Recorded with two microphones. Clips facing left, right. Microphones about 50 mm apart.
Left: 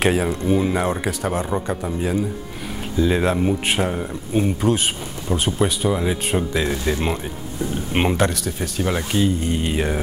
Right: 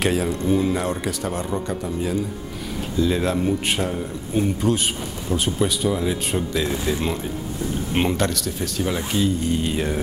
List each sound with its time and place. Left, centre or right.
0.0 s a man's voice: left
4.6 s a man's voice: centre
7.9 s speech: centre